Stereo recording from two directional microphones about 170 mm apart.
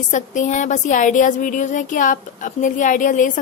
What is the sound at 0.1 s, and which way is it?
A woman's voice, 45° left (ahead or behind).